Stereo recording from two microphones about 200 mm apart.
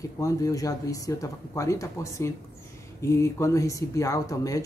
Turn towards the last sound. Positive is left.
turn(degrees=15)  # may be behind; listen again after turning